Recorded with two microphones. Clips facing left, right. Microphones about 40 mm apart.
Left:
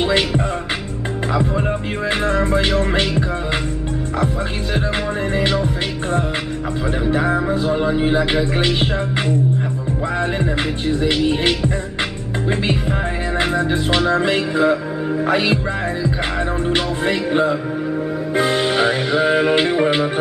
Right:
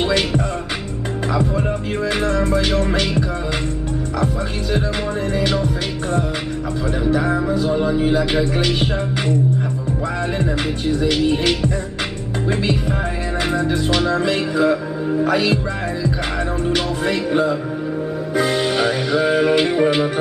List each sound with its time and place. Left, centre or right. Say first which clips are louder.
1.3 s speech: left 1 dB; centre
7.1 s speech: even; left
10.4 s speech: even; left
11.2 s music: even; centre
13.6 s speech: left 1 dB; left
19.6 s music: even; centre